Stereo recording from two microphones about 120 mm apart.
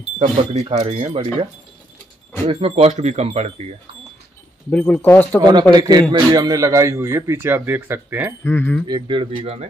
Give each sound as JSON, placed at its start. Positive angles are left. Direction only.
{"t": 0.4, "sound": "speech", "side_deg": -60}
{"t": 4.6, "sound": "speech", "side_deg": 15}
{"t": 5.4, "sound": "speech", "side_deg": -35}
{"t": 8.5, "sound": "speech", "side_deg": 20}
{"t": 8.8, "sound": "speech", "side_deg": -40}